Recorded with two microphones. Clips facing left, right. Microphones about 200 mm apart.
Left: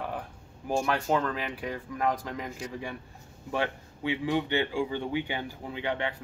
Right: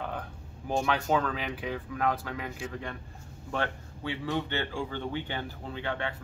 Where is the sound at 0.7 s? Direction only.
5° left (ahead or behind).